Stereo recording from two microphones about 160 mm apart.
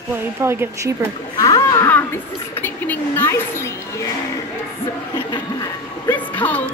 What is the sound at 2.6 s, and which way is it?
A woman's voice, 10° left (ahead or behind).